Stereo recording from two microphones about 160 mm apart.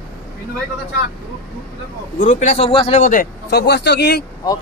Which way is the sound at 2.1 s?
50° left (ahead or behind).